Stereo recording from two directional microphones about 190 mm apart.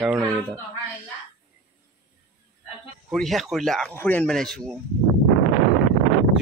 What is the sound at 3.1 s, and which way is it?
Speech, centre (ahead or behind).